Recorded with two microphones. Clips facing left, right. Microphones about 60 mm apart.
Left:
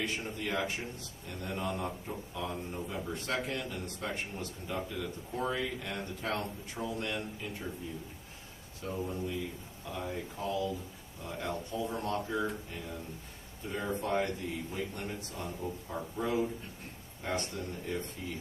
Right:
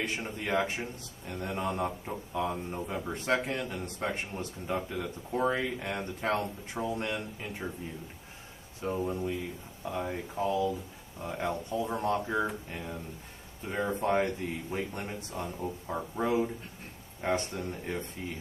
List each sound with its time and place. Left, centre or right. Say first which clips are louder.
0.0 s speech: right 2 dB; right
8.8 s speech: right 5 dB; right